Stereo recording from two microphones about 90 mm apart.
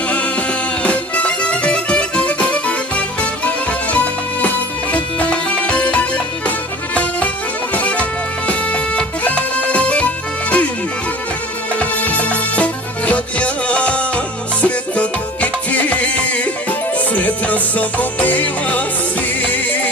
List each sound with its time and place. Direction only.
0.1 s music: 15° left (ahead or behind)
11.8 s music: 15° left (ahead or behind)